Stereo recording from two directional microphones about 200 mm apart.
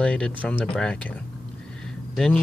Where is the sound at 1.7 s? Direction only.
5° left (ahead or behind).